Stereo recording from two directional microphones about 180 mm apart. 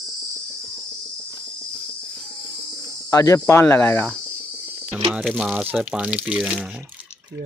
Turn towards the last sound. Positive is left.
turn(degrees=-5)  # may be behind; listen again after turning